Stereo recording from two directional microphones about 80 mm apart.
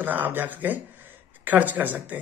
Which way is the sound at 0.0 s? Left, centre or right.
Right.